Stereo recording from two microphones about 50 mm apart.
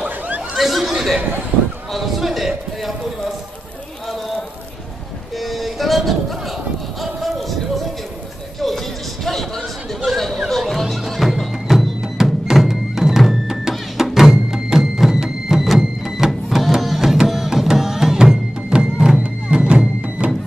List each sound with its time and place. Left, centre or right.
0.6 s chatter: centre
1.9 s music: centre
5.4 s a sound: centre
8.5 s music: centre
10.0 s a sound: centre
10.5 s music: centre
12.0 s music: centre